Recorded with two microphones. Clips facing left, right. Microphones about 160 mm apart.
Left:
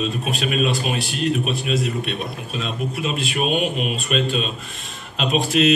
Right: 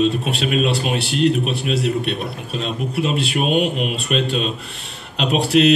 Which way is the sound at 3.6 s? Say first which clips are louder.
Right 3 dB; centre (ahead or behind).